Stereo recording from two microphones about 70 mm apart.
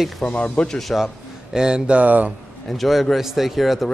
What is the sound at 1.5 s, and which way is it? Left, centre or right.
Speech, centre.